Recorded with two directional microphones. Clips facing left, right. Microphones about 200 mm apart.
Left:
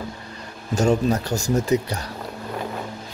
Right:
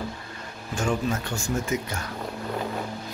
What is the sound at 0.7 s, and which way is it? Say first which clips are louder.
Speech: left 7 dB; 40° left (ahead or behind).